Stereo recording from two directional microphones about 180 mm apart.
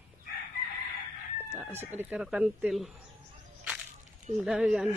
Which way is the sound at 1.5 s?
5° right (ahead or behind).